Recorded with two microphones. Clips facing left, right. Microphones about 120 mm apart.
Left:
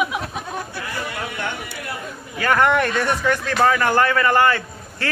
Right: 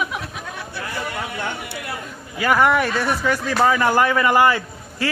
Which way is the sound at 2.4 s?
5° right (ahead or behind).